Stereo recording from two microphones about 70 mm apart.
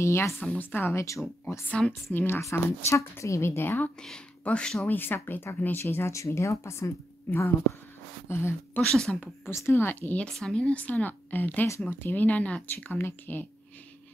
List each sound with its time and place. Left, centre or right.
0.0 s a woman's voice: left
0.4 s speech: left
0.9 s speech: left
1.7 s speech: centre
2.1 s a woman's voice: left
2.5 s a woman's voice: left
4.5 s speech: centre
4.8 s a woman's voice: left
8.3 s a woman's voice: left
8.9 s speech: centre
9.5 s a woman's voice: left